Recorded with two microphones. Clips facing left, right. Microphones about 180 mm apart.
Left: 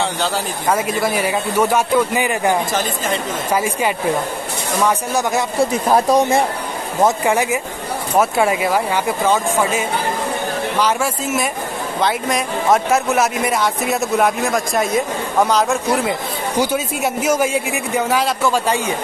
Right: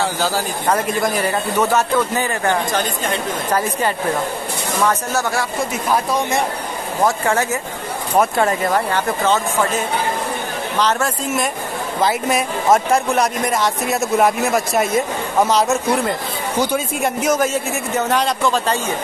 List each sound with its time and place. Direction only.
0.7 s speech: 5° left (ahead or behind)
5.7 s speech: 35° left (ahead or behind)
7.0 s speech: 15° left (ahead or behind)
8.2 s speech: 5° left (ahead or behind)